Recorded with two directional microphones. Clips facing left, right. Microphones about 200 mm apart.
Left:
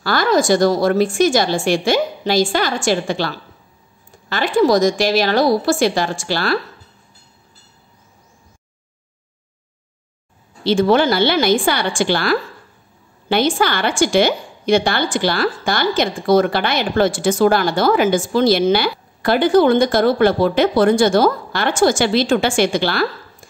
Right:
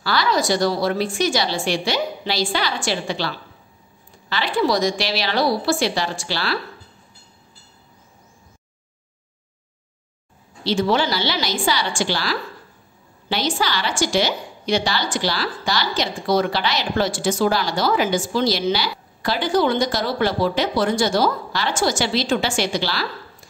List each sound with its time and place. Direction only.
0.0 s a woman's voice: 50° left (ahead or behind)
10.6 s a woman's voice: 55° left (ahead or behind)